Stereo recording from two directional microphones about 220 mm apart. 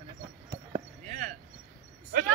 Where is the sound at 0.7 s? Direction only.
35° right (ahead or behind).